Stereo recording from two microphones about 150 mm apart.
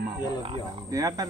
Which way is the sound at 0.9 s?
25° right (ahead or behind).